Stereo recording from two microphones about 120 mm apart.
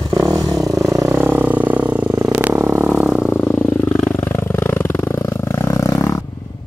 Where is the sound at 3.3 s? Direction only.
10° left (ahead or behind).